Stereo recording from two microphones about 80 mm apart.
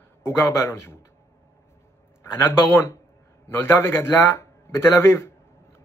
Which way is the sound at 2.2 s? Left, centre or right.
Left.